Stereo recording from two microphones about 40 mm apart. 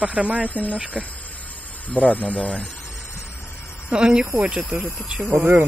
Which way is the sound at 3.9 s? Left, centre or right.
Right.